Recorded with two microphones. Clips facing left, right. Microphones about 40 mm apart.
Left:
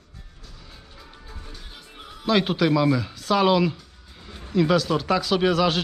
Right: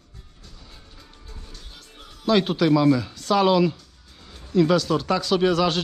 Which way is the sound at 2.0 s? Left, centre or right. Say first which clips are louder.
Left 6 dB; centre.